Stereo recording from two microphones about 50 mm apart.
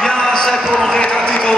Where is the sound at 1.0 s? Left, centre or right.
Centre.